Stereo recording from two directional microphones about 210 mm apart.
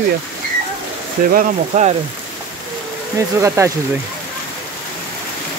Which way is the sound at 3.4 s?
15° right (ahead or behind).